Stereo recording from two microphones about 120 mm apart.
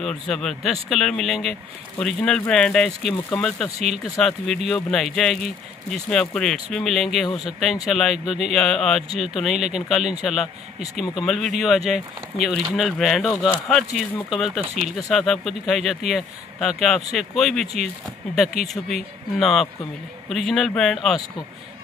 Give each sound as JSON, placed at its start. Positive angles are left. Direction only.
{"t": 0.0, "sound": "speech", "side_deg": 5}
{"t": 18.7, "sound": "speech", "side_deg": 0}